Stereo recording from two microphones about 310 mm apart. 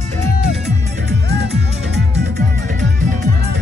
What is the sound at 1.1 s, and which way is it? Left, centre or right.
Music, right.